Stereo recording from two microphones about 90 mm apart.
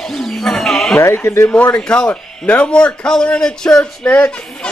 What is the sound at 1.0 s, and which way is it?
Speech, 30° left (ahead or behind).